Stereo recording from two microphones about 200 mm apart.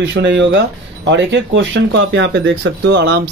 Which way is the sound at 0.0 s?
60° right (ahead or behind).